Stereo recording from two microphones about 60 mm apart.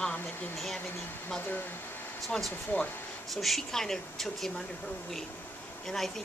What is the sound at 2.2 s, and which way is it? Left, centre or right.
Speech, centre.